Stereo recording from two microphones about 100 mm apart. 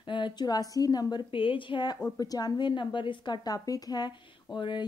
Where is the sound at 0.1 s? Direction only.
50° left (ahead or behind).